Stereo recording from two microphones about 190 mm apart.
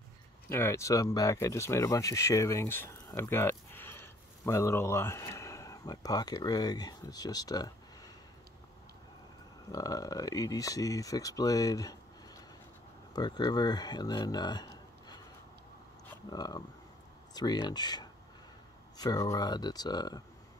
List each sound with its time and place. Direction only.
0.5 s speech: 15° left (ahead or behind)
9.7 s speech: 20° left (ahead or behind)
16.3 s speech: 20° left (ahead or behind)